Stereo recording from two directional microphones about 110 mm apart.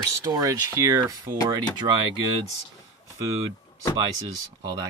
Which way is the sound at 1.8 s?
55° right (ahead or behind).